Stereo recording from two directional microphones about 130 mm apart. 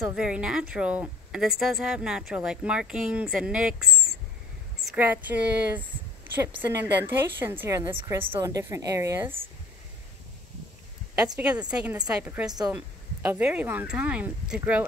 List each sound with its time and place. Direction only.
0.1 s a woman's voice: 5° right (ahead or behind)
8.4 s a woman's voice: 25° right (ahead or behind)
11.3 s speech: 10° right (ahead or behind)
12.4 s a woman's voice: 30° right (ahead or behind)
12.7 s speech: 15° right (ahead or behind)